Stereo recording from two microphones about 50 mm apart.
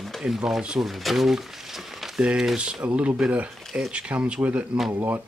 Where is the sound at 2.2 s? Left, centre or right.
Centre.